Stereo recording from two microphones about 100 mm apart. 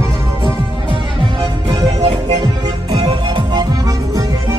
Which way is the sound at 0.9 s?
50° right (ahead or behind).